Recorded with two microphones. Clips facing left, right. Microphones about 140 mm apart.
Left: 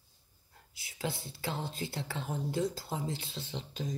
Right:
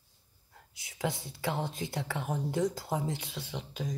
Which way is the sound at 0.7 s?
20° right (ahead or behind).